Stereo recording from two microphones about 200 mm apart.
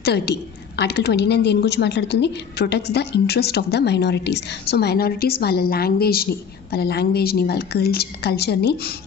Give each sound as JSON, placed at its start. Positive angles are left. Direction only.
{"t": 0.0, "sound": "a woman's voice", "side_deg": 55}